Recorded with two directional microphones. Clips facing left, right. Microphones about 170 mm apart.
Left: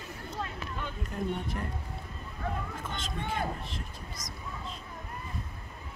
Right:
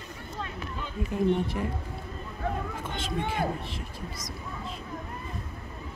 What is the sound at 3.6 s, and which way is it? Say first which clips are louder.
Speech: right 4 dB; 5° right (ahead or behind).